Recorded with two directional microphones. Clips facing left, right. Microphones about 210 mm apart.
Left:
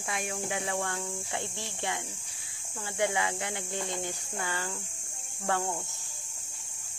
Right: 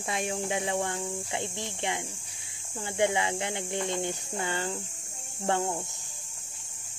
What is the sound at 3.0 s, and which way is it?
Speech, 25° right (ahead or behind).